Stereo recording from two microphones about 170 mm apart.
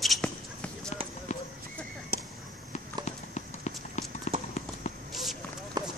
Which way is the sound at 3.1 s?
45° left (ahead or behind).